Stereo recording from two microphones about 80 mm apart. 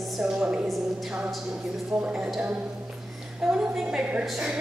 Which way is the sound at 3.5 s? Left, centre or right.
Centre.